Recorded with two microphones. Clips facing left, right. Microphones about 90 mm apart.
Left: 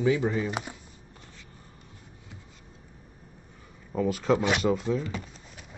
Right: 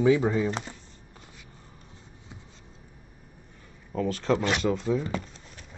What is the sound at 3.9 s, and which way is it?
Speech, 10° left (ahead or behind).